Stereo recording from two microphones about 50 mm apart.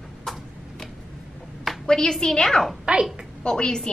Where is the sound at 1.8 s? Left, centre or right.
Centre.